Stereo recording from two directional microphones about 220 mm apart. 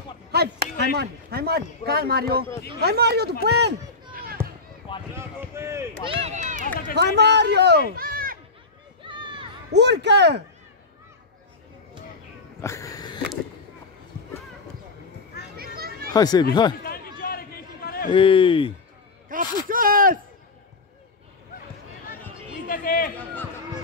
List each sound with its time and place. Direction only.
0.3 s speech: 45° right (ahead or behind)
5.1 s speech: 10° right (ahead or behind)
6.0 s speech: 25° right (ahead or behind)
7.0 s speech: 50° right (ahead or behind)
9.0 s run: 20° right (ahead or behind)
9.8 s speech: 50° right (ahead or behind)
12.6 s a sound: 15° left (ahead or behind)
15.5 s children playing: 45° right (ahead or behind)
16.1 s speech: 15° left (ahead or behind)
17.2 s a sound: 45° left (ahead or behind)
18.1 s speech: 25° left (ahead or behind)
19.2 s speech: 40° right (ahead or behind)
22.7 s chatter: 40° left (ahead or behind)